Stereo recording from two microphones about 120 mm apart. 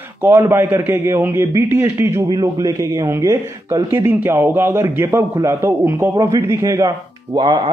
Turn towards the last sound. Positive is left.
turn(degrees=-35)  # may be behind; listen again after turning